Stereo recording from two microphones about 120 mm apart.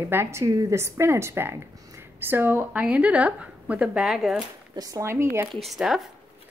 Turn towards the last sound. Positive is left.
turn(degrees=0)  # may be behind; listen again after turning